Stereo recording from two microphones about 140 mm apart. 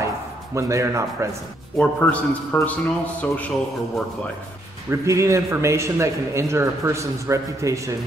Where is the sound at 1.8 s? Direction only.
10° left (ahead or behind).